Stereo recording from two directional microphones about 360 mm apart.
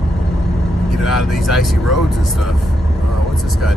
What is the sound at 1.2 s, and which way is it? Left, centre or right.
Speech, centre.